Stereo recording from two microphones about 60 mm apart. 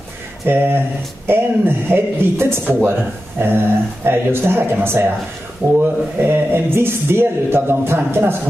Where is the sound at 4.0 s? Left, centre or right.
Right.